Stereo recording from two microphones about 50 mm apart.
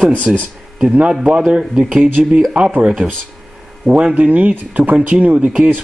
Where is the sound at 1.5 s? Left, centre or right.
Centre.